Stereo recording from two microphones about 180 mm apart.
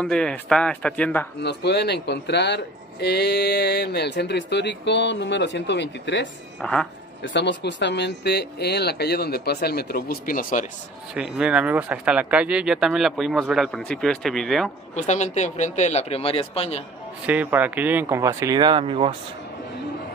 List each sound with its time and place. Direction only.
0.0 s speech: 5° left (ahead or behind)
1.4 s speech: 70° left (ahead or behind)
6.6 s speech: 5° left (ahead or behind)
7.2 s speech: 75° left (ahead or behind); by 10.7 s 45° left (ahead or behind)
11.1 s speech: 5° right (ahead or behind)
15.0 s speech: 40° left (ahead or behind)
17.3 s speech: 10° right (ahead or behind); by 19.1 s 30° right (ahead or behind)